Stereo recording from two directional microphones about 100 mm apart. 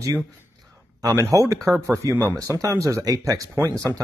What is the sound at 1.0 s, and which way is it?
Speech, 30° right (ahead or behind).